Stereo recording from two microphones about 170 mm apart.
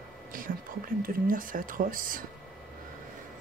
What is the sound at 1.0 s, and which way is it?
Speech, 55° right (ahead or behind).